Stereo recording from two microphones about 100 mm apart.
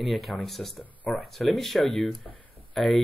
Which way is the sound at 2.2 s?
15° left (ahead or behind).